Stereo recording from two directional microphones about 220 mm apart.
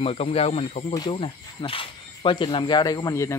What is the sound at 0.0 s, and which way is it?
Speech, 25° left (ahead or behind).